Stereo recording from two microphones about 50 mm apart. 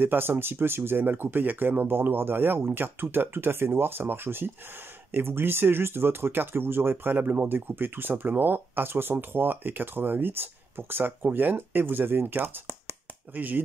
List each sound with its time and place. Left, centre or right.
0.0 s speech: right